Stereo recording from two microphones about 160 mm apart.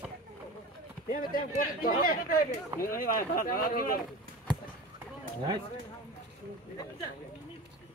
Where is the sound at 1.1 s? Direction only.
60° left (ahead or behind).